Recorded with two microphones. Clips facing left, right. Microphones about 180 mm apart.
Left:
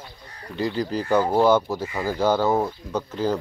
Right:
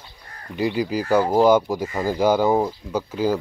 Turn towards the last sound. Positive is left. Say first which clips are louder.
# right 2 dB
turn(degrees=-10)  # may be behind; listen again after turning